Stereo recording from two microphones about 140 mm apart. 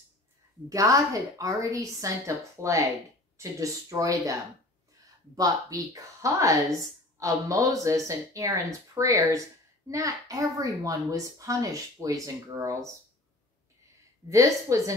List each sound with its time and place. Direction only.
0.7 s a woman's voice: 25° right (ahead or behind)
14.3 s a woman's voice: 25° right (ahead or behind)